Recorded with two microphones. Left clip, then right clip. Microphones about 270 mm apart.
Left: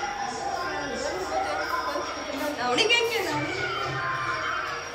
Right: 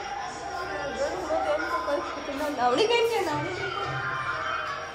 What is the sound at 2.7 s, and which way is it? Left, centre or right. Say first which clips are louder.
Speech: left 3 dB; right.